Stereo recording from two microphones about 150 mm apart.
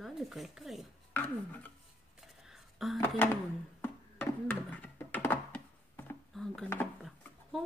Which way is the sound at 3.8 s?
15° left (ahead or behind).